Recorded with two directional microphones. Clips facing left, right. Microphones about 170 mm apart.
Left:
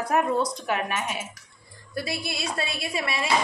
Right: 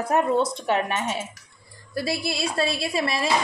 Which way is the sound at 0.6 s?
30° right (ahead or behind).